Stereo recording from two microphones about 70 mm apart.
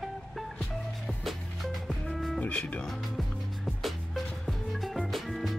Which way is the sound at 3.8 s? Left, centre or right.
Centre.